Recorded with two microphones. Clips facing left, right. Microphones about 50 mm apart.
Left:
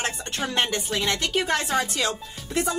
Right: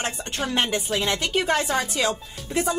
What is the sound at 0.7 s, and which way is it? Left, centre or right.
Speech, centre.